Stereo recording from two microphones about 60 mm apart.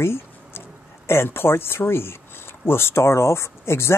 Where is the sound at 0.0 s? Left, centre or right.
Left.